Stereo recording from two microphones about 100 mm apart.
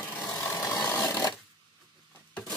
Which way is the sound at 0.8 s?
20° left (ahead or behind).